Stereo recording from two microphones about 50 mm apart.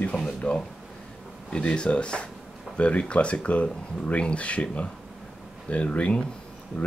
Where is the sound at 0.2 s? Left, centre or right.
Centre.